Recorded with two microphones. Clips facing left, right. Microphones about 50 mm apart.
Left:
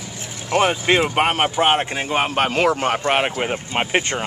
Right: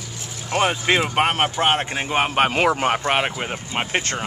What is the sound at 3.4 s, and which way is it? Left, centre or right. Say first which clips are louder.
Speech: left 4 dB; centre.